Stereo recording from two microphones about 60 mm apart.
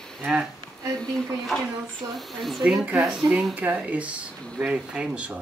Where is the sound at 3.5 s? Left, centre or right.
Right.